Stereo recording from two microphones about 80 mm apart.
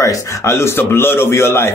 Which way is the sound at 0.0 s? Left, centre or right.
Left.